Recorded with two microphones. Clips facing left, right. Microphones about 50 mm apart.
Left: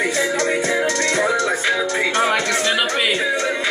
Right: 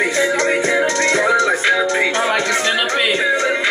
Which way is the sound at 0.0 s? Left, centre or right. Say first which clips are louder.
Right 3 dB; centre.